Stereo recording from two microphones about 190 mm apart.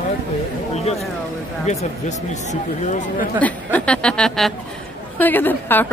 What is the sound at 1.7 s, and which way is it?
Speech, 40° left (ahead or behind).